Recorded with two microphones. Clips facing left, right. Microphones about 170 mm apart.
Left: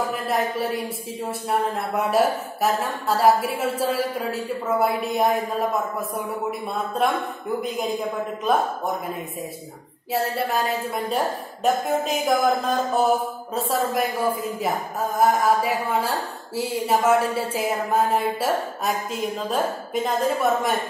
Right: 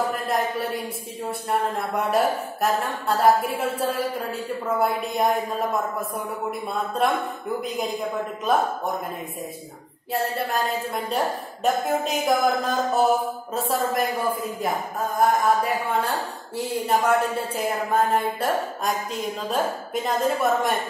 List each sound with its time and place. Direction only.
0.1 s a woman's voice: centre (ahead or behind)
6.7 s a woman's voice: centre (ahead or behind)
11.1 s a woman's voice: centre (ahead or behind)